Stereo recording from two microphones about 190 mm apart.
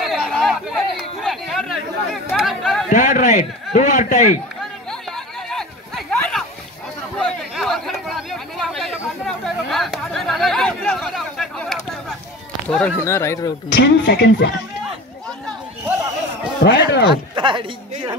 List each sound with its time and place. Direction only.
0.0 s chatter: centre (ahead or behind)
2.9 s a man's voice: 40° left (ahead or behind)
5.1 s a sound: 5° left (ahead or behind)
12.6 s speech: 5° left (ahead or behind)
13.7 s speech: 65° left (ahead or behind)
14.9 s a sound: 5° left (ahead or behind)
16.6 s speech: 65° left (ahead or behind)
17.4 s speech: 25° right (ahead or behind)